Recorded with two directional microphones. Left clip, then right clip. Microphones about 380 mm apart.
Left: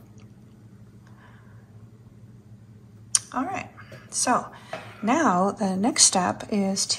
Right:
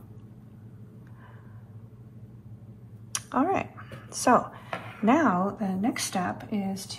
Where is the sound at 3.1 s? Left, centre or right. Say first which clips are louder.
Right 1 dB; centre.